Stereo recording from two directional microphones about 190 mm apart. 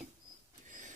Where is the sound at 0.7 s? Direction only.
40° right (ahead or behind).